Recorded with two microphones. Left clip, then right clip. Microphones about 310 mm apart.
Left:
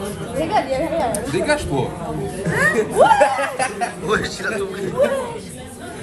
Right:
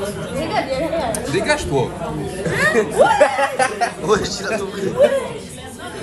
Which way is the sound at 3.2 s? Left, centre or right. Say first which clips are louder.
Right 2 dB; right.